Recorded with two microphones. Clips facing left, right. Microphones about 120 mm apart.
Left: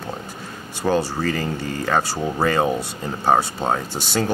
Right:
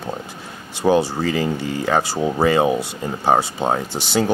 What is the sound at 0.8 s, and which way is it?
Speech, 15° right (ahead or behind).